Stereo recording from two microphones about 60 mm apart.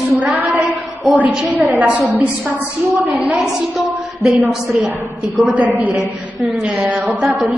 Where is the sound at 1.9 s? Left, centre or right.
Right.